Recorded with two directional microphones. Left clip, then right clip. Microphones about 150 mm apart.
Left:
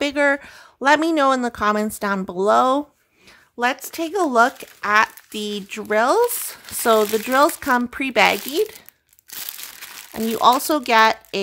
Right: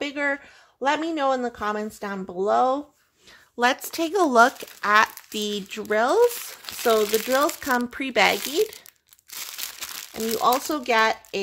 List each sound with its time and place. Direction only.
0.0 s speech: 40° left (ahead or behind)
3.5 s speech: centre (ahead or behind)
5.8 s speech: 20° left (ahead or behind)
6.8 s speech: 35° left (ahead or behind)
10.1 s speech: 40° left (ahead or behind)